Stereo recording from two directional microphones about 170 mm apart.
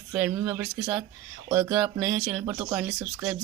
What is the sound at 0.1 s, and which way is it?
Speech, 5° right (ahead or behind).